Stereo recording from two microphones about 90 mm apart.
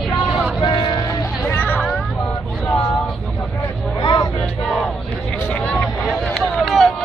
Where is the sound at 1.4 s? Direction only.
20° left (ahead or behind).